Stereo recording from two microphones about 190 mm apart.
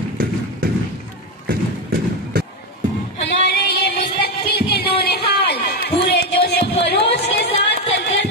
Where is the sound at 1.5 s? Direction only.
55° right (ahead or behind).